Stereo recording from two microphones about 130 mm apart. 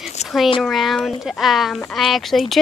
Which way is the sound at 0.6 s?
Centre (ahead or behind).